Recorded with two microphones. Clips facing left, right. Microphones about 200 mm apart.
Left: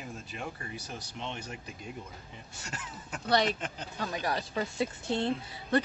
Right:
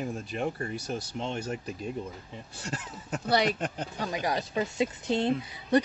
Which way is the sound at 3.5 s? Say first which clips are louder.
Right 6 dB; 55° right (ahead or behind).